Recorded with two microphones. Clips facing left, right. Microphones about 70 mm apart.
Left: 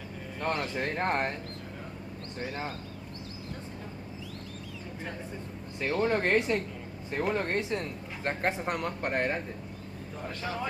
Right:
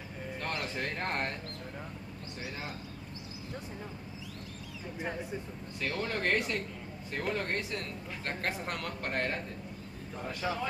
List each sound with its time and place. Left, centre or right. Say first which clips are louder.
0.4 s speech: left 6 dB; left
5.8 s speech: left 7 dB; left